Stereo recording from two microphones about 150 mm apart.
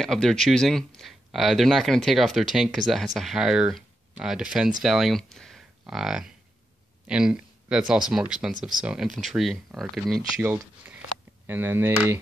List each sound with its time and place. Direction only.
0.0 s speech: centre (ahead or behind)
11.4 s speech: 15° right (ahead or behind)